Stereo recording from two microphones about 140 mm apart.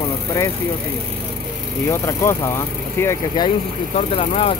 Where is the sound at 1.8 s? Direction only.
20° left (ahead or behind).